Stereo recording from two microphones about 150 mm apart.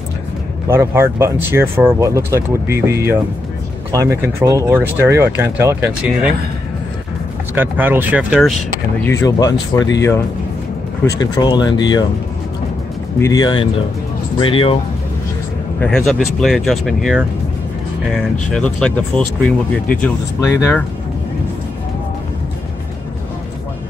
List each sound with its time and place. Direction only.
0.7 s speech: 15° right (ahead or behind)
7.5 s speech: 10° right (ahead or behind)
9.0 s speech: 20° left (ahead or behind)
13.2 s speech: 25° left (ahead or behind)
15.8 s speech: 5° left (ahead or behind)